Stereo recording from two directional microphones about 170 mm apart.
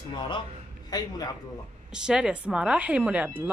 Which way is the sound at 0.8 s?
20° left (ahead or behind).